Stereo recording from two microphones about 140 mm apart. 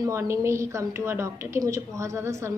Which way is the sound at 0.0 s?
20° right (ahead or behind).